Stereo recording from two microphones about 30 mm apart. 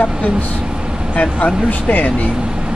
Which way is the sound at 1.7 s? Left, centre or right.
Left.